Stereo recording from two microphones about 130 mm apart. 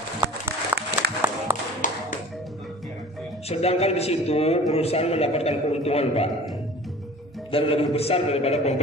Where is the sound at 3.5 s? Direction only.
50° left (ahead or behind).